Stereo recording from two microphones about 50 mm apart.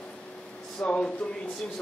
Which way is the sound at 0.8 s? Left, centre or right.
Left.